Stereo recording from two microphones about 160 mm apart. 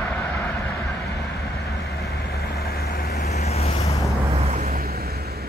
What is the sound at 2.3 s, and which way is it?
Vehicle, 75° left (ahead or behind).